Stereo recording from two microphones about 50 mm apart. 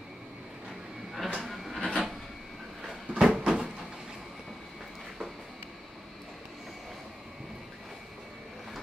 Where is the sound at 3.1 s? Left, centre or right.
Centre.